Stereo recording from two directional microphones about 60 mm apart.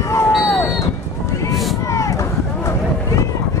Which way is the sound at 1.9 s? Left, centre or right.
Left.